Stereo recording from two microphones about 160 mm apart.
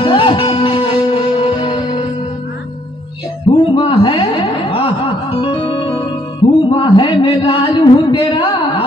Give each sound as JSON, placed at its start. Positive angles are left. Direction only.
{"t": 0.0, "sound": "music", "side_deg": 30}
{"t": 3.5, "sound": "music", "side_deg": 30}
{"t": 6.8, "sound": "a sound", "side_deg": 30}